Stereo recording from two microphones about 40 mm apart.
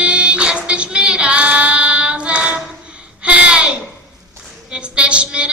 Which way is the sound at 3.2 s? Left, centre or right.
Right.